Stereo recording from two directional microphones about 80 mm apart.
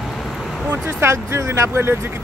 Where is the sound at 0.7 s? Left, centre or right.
Right.